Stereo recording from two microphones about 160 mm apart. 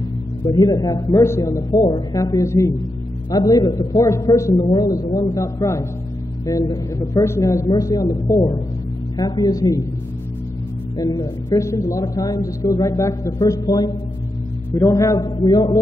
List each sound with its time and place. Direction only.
0.5 s speech: 25° left (ahead or behind)
11.0 s speech: 25° left (ahead or behind)